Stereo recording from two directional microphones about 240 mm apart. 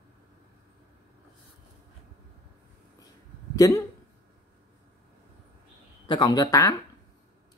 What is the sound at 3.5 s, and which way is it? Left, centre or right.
Speech, centre.